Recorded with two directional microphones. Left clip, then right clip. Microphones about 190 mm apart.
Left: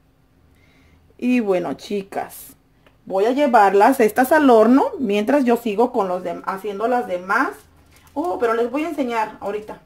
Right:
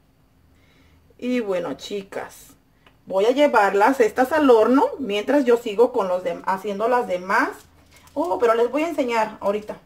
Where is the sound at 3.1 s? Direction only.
30° left (ahead or behind).